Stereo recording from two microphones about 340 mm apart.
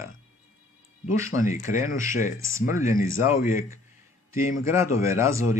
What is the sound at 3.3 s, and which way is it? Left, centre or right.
Speech, left.